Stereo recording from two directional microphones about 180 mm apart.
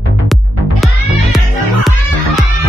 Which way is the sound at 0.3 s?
Centre (ahead or behind).